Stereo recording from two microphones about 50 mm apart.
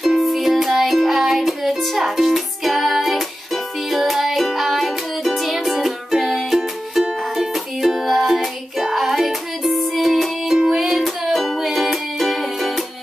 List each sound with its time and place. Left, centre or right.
0.0 s music: centre